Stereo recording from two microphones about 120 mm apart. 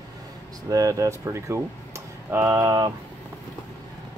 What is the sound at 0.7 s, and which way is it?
Speech, 30° right (ahead or behind).